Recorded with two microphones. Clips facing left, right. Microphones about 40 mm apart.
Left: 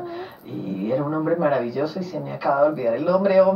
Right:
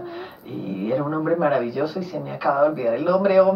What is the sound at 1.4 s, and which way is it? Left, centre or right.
Speech, centre.